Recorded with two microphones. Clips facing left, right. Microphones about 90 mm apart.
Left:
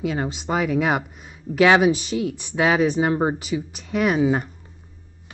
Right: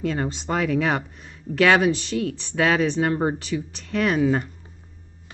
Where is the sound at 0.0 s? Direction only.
10° left (ahead or behind).